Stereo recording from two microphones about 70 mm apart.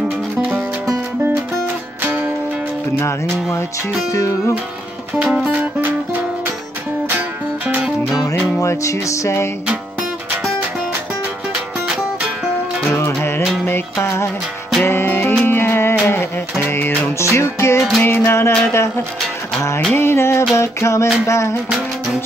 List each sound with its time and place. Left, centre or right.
3.0 s music: left
5.2 s music: centre
5.5 s music: right
7.6 s music: centre
8.3 s music: left
12.9 s music: left